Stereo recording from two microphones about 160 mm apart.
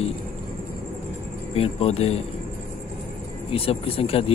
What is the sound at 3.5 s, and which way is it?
Speech, 35° left (ahead or behind).